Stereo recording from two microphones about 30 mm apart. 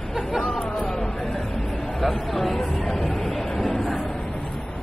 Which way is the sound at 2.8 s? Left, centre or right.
Left.